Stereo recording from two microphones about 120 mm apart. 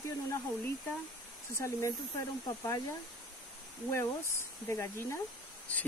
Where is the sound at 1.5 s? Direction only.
25° left (ahead or behind).